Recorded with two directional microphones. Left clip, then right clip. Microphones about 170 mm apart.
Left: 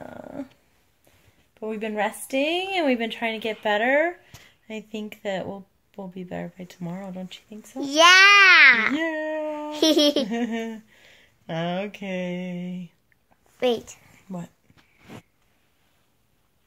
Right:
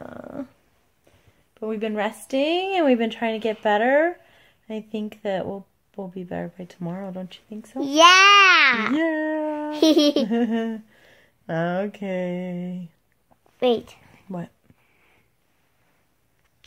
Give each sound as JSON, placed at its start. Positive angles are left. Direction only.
{"t": 0.0, "sound": "dog", "side_deg": -20}
{"t": 1.5, "sound": "speech", "side_deg": -25}
{"t": 7.9, "sound": "speech", "side_deg": -15}
{"t": 8.9, "sound": "speech", "side_deg": -35}
{"t": 9.5, "sound": "speech", "side_deg": -15}
{"t": 10.3, "sound": "speech", "side_deg": -30}
{"t": 13.6, "sound": "speech", "side_deg": -20}